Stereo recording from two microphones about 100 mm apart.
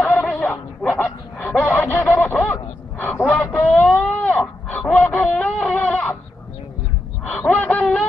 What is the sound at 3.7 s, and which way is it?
Wail, 5° left (ahead or behind).